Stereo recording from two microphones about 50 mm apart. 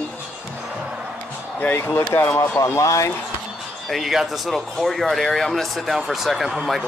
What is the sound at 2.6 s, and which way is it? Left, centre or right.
Speech, left.